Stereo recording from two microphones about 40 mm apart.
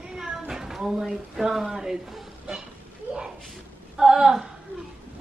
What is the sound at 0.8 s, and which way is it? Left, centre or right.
Speech, centre.